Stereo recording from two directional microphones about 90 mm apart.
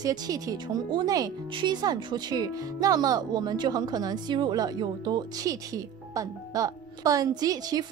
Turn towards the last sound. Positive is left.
turn(degrees=-45)  # may be behind; listen again after turning